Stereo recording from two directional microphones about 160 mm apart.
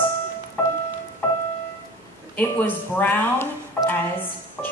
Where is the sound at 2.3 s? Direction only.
10° left (ahead or behind).